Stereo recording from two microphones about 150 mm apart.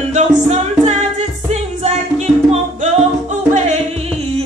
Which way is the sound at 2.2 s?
45° right (ahead or behind).